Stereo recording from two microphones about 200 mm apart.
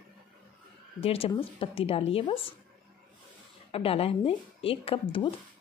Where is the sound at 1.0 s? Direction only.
30° left (ahead or behind).